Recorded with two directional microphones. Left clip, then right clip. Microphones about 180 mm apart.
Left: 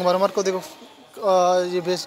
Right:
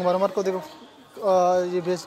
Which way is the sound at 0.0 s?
Centre (ahead or behind).